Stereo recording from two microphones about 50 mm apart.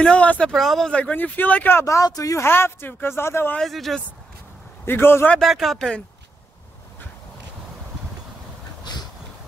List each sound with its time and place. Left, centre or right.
0.0 s speech: centre
0.5 s speech: centre
0.8 s speech: left
1.1 s speech: left
1.9 s speech: left
2.4 s speech: left
3.6 s speech: centre
4.8 s speech: left
5.4 s speech: centre